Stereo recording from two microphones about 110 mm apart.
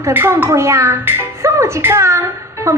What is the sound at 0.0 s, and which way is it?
Speech, 20° right (ahead or behind).